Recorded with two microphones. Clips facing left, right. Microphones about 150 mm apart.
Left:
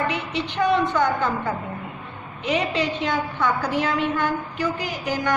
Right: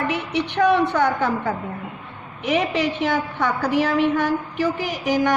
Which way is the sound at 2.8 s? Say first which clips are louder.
Right 2 dB; 80° right.